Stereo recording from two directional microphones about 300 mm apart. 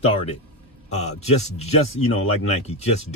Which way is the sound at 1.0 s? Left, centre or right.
Left.